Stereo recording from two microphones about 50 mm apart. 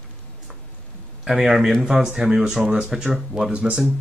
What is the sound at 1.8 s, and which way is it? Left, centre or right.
Speech, right.